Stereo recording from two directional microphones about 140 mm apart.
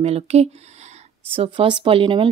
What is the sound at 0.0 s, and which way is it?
Speech, 50° right (ahead or behind).